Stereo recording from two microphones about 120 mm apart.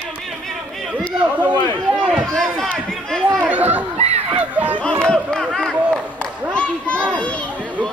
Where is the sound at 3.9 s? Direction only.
65° right (ahead or behind).